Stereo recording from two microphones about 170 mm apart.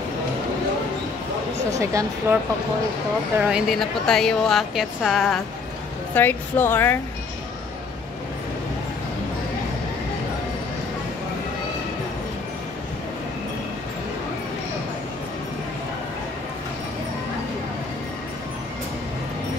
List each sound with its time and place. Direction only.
1.7 s speech: 20° right (ahead or behind)
3.3 s a woman's voice: 5° right (ahead or behind)
6.1 s speech: 10° left (ahead or behind)